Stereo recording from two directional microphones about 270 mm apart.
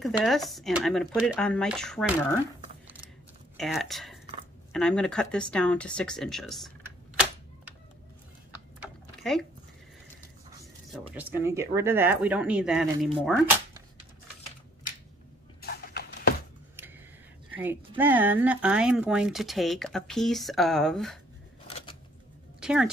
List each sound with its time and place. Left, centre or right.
0.0 s speech: centre
3.5 s speech: centre
8.7 s typing: centre
10.9 s speech: centre
15.6 s a sound: left
17.6 s speech: centre
21.6 s typewriter: left
22.6 s a sound: centre